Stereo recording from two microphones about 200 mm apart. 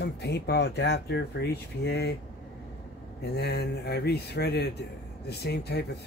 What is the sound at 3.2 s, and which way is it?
Speech, 55° left (ahead or behind).